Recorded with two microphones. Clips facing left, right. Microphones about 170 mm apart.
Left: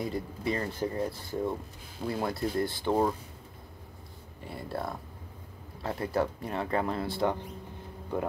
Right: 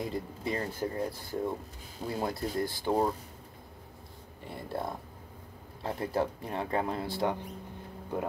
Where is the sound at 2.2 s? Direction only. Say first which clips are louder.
Left 2 dB; 10° right (ahead or behind).